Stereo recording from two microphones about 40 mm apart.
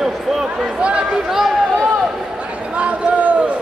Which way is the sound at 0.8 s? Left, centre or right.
Right.